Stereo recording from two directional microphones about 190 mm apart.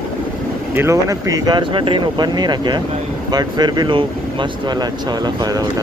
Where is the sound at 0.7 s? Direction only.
15° right (ahead or behind).